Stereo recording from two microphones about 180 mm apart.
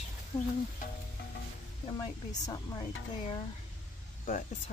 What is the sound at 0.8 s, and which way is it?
Sizzle, 45° left (ahead or behind).